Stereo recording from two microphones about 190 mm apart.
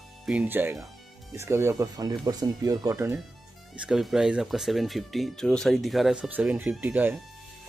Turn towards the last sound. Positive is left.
turn(degrees=-10)  # may be behind; listen again after turning